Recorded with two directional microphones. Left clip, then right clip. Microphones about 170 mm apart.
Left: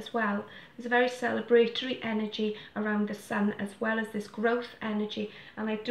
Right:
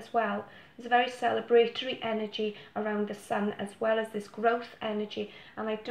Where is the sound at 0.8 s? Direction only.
30° right (ahead or behind).